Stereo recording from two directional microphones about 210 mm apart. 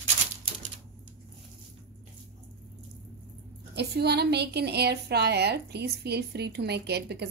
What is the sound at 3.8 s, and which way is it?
A woman's voice, 50° right (ahead or behind).